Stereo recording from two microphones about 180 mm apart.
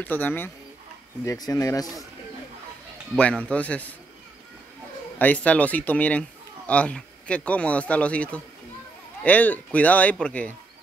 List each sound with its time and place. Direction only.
0.0 s speech: 10° left (ahead or behind)
3.2 s speech: 5° left (ahead or behind)
5.2 s speech: 10° left (ahead or behind)